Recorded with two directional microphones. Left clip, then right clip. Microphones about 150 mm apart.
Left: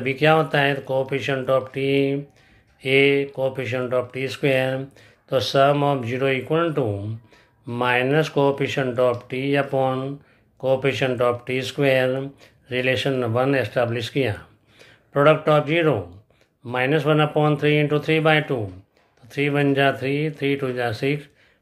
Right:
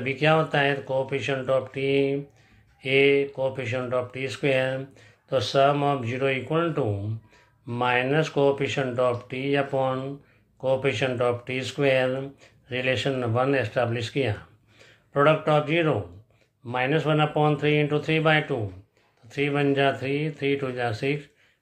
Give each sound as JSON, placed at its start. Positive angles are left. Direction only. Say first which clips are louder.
{"t": 0.0, "sound": "speech", "louder": "left 4 dB", "side_deg": 30}